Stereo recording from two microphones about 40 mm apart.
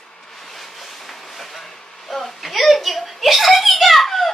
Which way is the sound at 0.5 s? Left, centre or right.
Centre.